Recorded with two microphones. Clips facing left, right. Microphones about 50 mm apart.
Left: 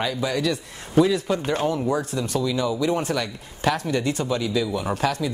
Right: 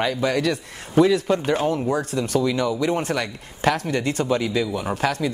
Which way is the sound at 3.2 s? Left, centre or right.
Right.